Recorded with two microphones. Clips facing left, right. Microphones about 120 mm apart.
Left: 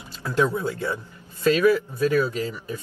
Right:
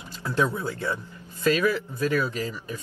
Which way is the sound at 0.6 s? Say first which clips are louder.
Left 3 dB; 25° left (ahead or behind).